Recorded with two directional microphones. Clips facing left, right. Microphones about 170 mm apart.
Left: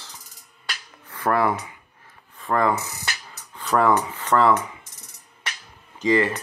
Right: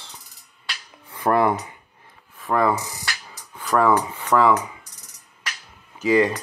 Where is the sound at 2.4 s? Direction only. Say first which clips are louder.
Right 1 dB; centre (ahead or behind).